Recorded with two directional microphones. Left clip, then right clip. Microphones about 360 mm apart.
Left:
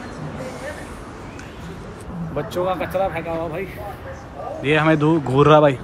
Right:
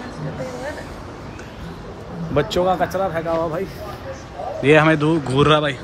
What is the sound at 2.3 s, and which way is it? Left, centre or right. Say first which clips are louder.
Speech: right 5 dB; right.